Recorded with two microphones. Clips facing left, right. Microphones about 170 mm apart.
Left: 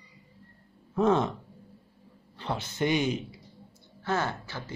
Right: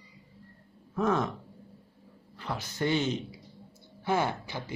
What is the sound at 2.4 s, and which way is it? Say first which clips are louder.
Speech: left 2 dB; 25° left (ahead or behind).